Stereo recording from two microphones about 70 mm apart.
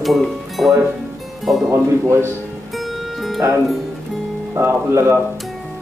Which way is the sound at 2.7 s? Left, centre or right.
Centre.